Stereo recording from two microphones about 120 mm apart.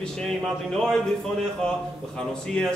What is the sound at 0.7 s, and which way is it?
Speech, 5° left (ahead or behind).